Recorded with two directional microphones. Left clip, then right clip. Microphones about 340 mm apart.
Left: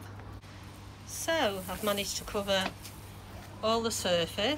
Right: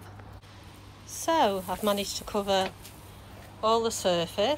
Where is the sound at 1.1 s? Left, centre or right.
Centre.